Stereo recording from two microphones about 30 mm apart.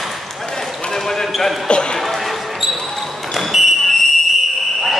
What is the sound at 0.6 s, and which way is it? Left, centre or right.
Basketball bounce, centre.